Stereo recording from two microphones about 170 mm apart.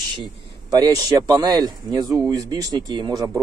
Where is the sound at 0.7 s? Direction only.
25° right (ahead or behind).